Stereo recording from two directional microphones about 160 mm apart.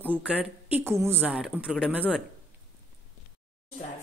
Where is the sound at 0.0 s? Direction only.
10° right (ahead or behind).